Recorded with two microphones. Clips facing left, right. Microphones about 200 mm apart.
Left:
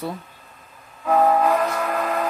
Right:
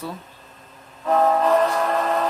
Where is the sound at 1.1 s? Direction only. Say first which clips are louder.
Even; 10° left (ahead or behind).